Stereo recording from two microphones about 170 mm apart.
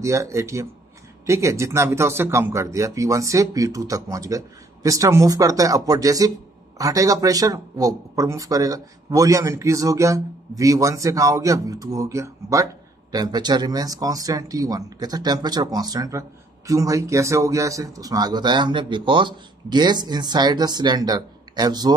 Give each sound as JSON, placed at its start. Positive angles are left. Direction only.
{"t": 0.0, "sound": "speech", "side_deg": -20}